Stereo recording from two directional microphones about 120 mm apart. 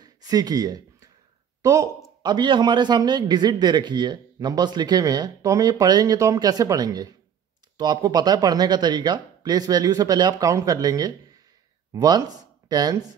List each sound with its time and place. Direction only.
0.0 s speech: 35° right (ahead or behind)
2.2 s speech: 40° right (ahead or behind)